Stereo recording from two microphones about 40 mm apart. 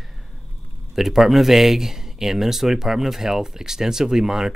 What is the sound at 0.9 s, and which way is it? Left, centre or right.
Speech, centre.